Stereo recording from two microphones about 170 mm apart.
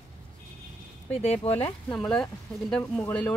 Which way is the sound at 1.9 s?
5° left (ahead or behind).